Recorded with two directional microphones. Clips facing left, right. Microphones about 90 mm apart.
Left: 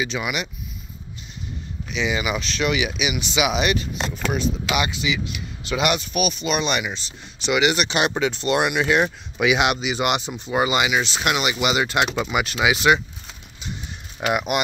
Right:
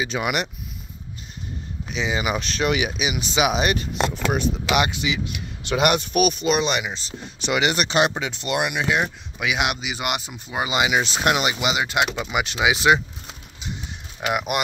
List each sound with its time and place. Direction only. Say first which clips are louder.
0.1 s speech: right 2 dB; 55° right (ahead or behind)
1.9 s speech: even; 35° right (ahead or behind)
4.3 s speech: left 2 dB; 55° right (ahead or behind)
6.4 s speech: right 2 dB; 25° right (ahead or behind)
6.9 s speech: right 1 dB; 40° right (ahead or behind)
8.1 s speech: left 5 dB; 10° right (ahead or behind)
10.9 s speech: right 1 dB; 40° right (ahead or behind)
11.3 s speech: left 1 dB; 25° right (ahead or behind)
11.7 s speech: left 2 dB; 10° right (ahead or behind)
14.2 s speech: left 2 dB; centre (ahead or behind)